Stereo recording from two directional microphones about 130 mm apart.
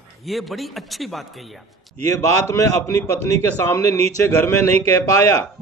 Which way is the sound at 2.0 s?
25° left (ahead or behind).